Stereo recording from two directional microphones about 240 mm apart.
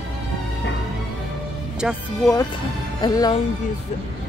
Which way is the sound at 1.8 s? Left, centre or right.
Centre.